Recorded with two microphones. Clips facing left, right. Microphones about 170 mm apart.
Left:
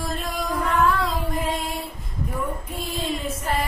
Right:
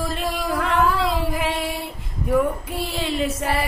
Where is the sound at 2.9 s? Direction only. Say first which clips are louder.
Right 4 dB; 80° right.